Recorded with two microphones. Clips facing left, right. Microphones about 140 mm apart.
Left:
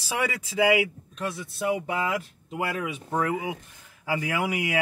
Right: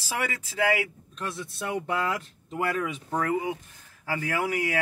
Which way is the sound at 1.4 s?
5° left (ahead or behind).